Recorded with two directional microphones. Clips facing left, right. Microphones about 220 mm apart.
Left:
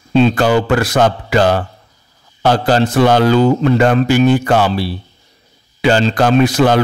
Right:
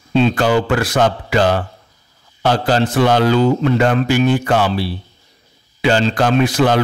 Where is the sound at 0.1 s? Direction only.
40° left (ahead or behind).